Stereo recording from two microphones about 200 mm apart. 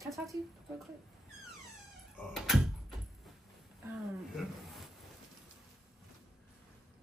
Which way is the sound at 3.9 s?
Centre (ahead or behind).